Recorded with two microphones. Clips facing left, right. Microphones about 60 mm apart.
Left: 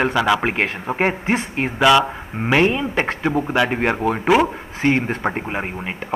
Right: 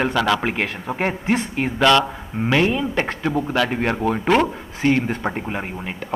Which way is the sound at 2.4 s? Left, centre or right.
Left.